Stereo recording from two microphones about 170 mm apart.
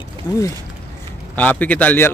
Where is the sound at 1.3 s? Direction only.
10° left (ahead or behind).